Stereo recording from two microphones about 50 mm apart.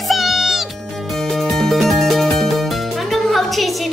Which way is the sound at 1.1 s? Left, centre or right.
Centre.